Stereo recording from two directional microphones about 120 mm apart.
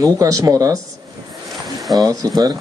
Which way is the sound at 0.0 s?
30° right (ahead or behind).